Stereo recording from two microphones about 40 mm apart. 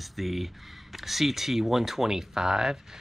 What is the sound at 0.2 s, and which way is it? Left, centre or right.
Speech, centre.